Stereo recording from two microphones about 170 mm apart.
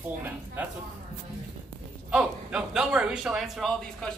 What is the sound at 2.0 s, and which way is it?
A man's voice, 5° right (ahead or behind).